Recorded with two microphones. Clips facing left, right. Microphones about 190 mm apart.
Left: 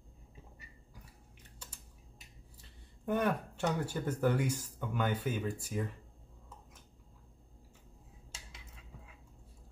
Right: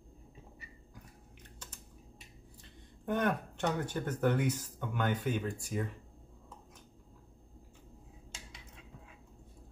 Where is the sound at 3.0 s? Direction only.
10° left (ahead or behind).